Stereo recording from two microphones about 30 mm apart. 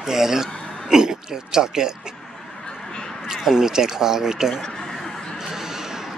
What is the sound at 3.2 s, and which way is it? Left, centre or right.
Speech, centre.